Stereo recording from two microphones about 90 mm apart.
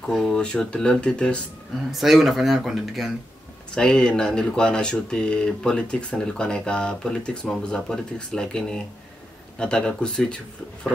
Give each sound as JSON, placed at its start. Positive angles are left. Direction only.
{"t": 0.1, "sound": "speech", "side_deg": 5}
{"t": 1.9, "sound": "speech", "side_deg": 0}
{"t": 3.7, "sound": "speech", "side_deg": 10}